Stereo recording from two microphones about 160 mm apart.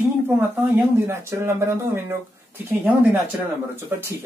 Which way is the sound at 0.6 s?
15° right (ahead or behind).